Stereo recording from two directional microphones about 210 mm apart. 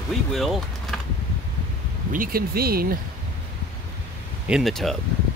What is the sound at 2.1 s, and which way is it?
Speech, 45° right (ahead or behind).